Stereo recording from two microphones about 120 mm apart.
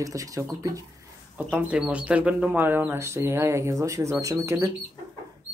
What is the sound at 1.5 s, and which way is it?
Speech, 10° right (ahead or behind).